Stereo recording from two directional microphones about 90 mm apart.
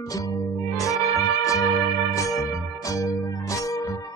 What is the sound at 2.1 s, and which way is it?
Music, 40° left (ahead or behind).